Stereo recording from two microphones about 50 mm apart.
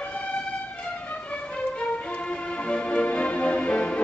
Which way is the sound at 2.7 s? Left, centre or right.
Left.